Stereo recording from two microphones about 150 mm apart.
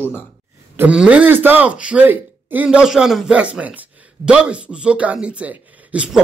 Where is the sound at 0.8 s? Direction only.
10° right (ahead or behind).